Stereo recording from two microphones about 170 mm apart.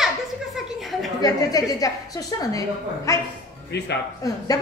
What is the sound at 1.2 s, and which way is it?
Speech, 20° left (ahead or behind).